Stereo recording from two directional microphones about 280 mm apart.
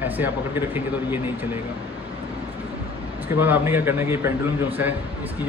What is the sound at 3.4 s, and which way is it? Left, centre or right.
Speech, centre.